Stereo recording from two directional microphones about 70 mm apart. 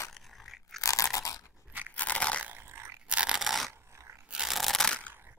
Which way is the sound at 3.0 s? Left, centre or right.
Centre.